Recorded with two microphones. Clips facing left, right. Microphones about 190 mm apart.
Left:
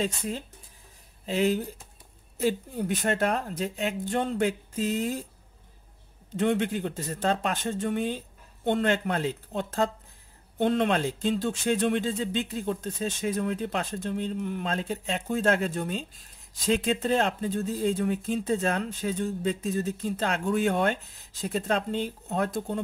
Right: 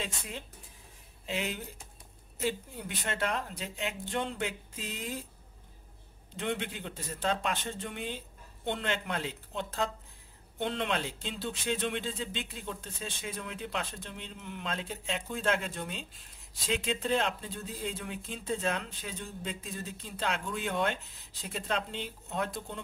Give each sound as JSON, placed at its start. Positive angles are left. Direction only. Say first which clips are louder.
{"t": 1.2, "sound": "speech", "louder": "left 10 dB", "side_deg": 40}
{"t": 6.4, "sound": "speech", "louder": "left 9 dB", "side_deg": 45}